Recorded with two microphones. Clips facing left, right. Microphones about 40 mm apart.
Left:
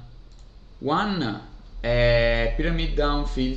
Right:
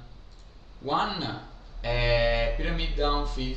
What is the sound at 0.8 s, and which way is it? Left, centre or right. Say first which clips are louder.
Speech: left 4 dB; right.